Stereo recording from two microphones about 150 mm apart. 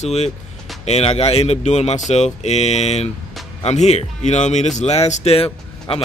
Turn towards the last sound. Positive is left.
turn(degrees=40)  # may be behind; listen again after turning